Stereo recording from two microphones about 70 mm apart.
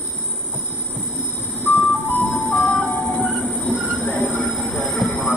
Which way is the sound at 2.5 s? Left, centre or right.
Left.